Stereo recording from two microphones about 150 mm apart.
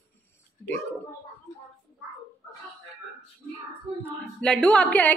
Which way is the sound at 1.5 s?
25° left (ahead or behind).